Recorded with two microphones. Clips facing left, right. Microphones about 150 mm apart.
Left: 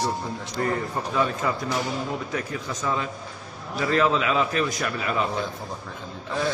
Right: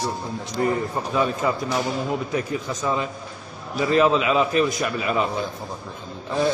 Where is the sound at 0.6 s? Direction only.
15° right (ahead or behind).